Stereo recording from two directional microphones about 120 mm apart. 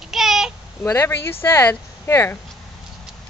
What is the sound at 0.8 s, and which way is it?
Speech, 20° left (ahead or behind).